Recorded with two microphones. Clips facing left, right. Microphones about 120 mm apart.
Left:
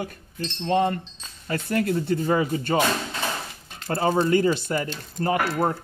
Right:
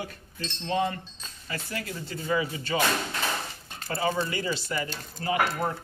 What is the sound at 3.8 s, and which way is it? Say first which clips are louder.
Speech: left 6 dB; 45° left (ahead or behind).